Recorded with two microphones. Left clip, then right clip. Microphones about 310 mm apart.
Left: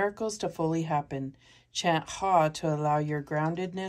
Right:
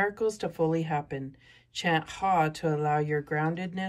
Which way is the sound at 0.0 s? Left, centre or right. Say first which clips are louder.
Right 2 dB; centre.